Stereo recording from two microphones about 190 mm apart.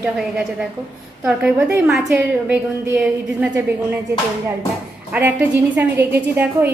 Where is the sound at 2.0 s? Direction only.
15° right (ahead or behind).